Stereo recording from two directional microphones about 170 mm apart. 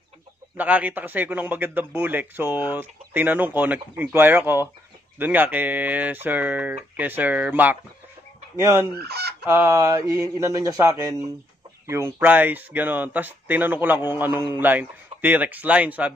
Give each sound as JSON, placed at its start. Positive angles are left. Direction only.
{"t": 0.6, "sound": "a man's voice", "side_deg": -10}
{"t": 8.5, "sound": "fowl", "side_deg": 25}
{"t": 8.9, "sound": "fowl", "side_deg": -70}
{"t": 9.5, "sound": "a man's voice", "side_deg": -15}